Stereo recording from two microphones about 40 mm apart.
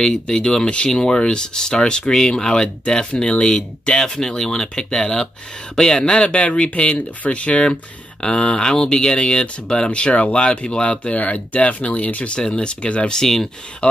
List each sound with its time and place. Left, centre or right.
0.1 s speech: centre; by 12.4 s left
12.4 s speech: left